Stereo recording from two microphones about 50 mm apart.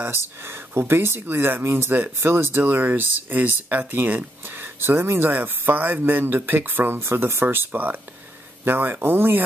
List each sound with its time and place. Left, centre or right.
0.7 s speech: right
4.8 s speech: right
5.3 s speech: right
7.4 s speech: right